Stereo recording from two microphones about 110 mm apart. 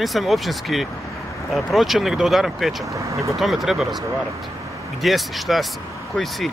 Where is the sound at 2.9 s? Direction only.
30° right (ahead or behind).